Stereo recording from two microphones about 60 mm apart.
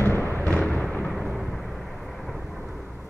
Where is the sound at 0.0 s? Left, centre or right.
Left.